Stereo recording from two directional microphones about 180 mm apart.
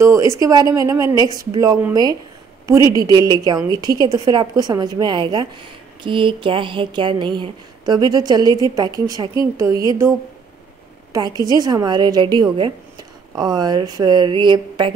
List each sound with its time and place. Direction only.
0.0 s a woman's voice: 15° right (ahead or behind)
11.1 s speech: 20° right (ahead or behind)